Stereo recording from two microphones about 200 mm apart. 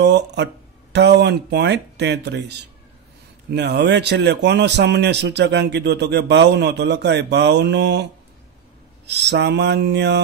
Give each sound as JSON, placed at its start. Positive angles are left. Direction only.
{"t": 0.0, "sound": "a man's voice", "side_deg": -60}